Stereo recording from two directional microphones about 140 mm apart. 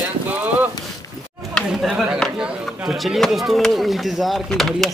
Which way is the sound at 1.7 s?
5° right (ahead or behind).